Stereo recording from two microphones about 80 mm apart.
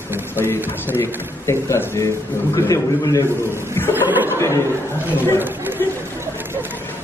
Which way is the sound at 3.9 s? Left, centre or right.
Right.